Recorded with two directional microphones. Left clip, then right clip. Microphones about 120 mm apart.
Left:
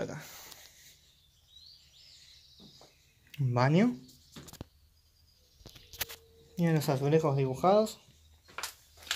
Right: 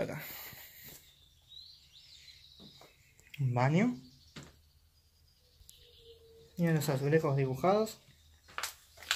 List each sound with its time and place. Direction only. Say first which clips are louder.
0.0 s a sound: right 1 dB; 5° left (ahead or behind)
3.3 s speech: left 3 dB; 40° left (ahead or behind)
6.5 s speech: left 3 dB; 35° left (ahead or behind); by 8.0 s 20° left (ahead or behind)